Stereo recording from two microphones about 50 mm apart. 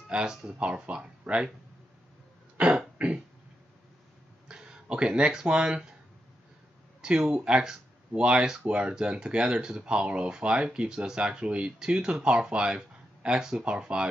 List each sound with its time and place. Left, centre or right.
0.1 s speech: centre
0.6 s speech: right
2.5 s cough: right
3.0 s a sound: right
4.5 s speech: centre
7.0 s speech: centre